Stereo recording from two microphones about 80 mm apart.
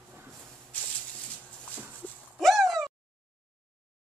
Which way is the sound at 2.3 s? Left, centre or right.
Centre.